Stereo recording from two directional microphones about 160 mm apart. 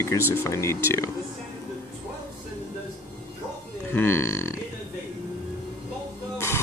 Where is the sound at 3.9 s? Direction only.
15° left (ahead or behind).